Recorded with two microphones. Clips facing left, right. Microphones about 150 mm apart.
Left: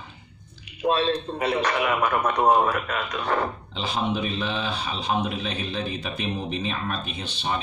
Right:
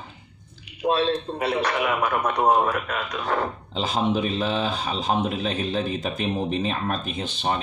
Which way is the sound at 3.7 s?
40° right (ahead or behind).